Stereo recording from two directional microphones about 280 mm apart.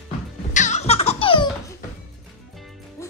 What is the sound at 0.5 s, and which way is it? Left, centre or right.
Baby laughter, left.